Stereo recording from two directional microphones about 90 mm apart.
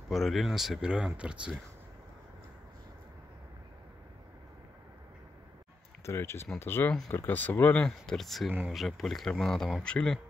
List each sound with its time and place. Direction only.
0.1 s speech: centre (ahead or behind)
6.0 s speech: 30° left (ahead or behind)
7.8 s speech: 5° left (ahead or behind)
8.5 s speech: 20° right (ahead or behind)
8.7 s speech: centre (ahead or behind)